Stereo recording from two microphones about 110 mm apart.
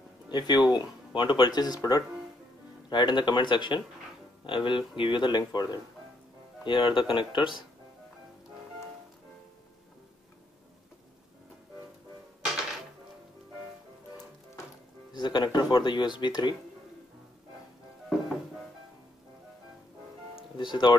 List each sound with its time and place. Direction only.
0.3 s speech: 40° left (ahead or behind)
2.9 s speech: 45° left (ahead or behind)
6.6 s speech: 50° left (ahead or behind)
15.1 s speech: 45° left (ahead or behind)
20.5 s speech: 45° left (ahead or behind)